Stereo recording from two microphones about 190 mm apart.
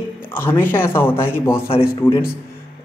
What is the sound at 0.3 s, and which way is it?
A man's voice, 10° left (ahead or behind).